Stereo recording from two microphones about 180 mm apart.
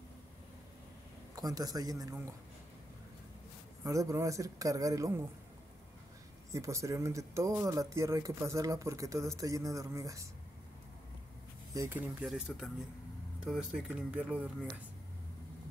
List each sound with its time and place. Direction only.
1.3 s speech: 20° right (ahead or behind)
3.8 s speech: 20° right (ahead or behind)
6.5 s speech: 15° right (ahead or behind)
11.7 s speech: 15° right (ahead or behind)